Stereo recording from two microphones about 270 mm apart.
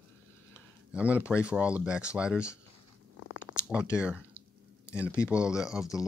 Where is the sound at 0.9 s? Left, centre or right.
Centre.